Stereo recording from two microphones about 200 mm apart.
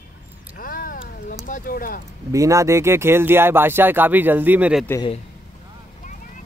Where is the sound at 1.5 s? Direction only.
45° left (ahead or behind).